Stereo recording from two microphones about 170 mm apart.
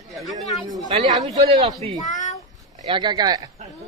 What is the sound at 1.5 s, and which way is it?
Speech, 30° right (ahead or behind).